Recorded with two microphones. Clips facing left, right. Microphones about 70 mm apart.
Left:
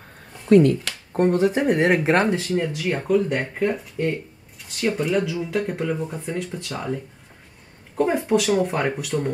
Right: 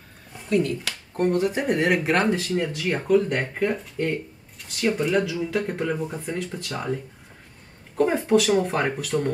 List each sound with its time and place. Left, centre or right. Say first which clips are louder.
0.5 s speech: left 8 dB; left
1.1 s speech: left 3 dB; left
2.4 s speech: left 2 dB; centre
7.9 s speech: even; centre
9.1 s speech: right 1 dB; centre